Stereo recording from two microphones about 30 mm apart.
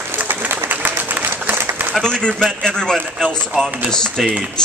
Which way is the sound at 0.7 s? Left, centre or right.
Right.